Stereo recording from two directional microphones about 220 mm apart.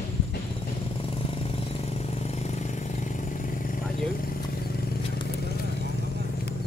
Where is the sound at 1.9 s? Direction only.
30° left (ahead or behind).